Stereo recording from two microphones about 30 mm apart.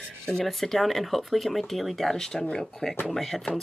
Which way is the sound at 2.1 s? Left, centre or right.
Centre.